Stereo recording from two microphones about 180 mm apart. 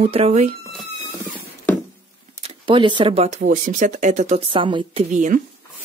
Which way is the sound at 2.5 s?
30° right (ahead or behind).